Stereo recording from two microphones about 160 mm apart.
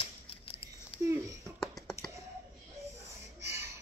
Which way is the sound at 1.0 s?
20° right (ahead or behind).